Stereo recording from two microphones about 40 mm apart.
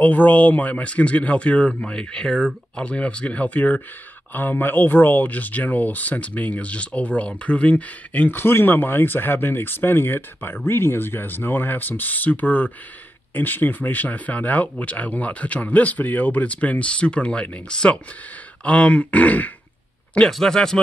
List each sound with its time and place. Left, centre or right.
0.0 s speech: left
4.3 s speech: left
8.3 s speech: left
20.2 s speech: centre